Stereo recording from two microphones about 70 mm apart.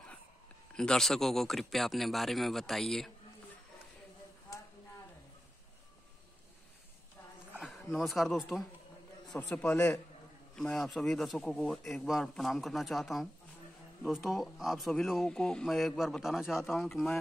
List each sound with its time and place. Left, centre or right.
0.7 s speech: centre
7.9 s speech: centre
9.4 s a man's voice: centre
10.5 s speech: centre